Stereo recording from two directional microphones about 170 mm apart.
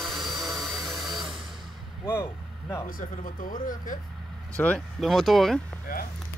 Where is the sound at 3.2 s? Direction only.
50° left (ahead or behind).